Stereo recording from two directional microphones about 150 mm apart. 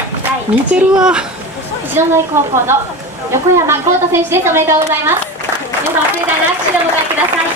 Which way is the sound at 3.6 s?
15° right (ahead or behind).